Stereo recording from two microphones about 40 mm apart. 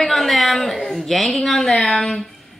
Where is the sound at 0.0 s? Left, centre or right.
Centre.